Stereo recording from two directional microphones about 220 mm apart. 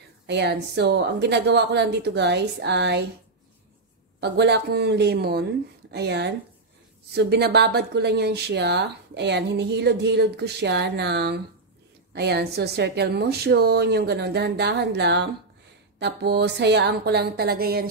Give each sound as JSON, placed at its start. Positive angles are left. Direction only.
{"t": 0.3, "sound": "speech", "side_deg": -50}
{"t": 4.2, "sound": "speech", "side_deg": -50}